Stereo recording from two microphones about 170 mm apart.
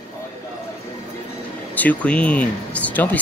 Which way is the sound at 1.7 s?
10° left (ahead or behind).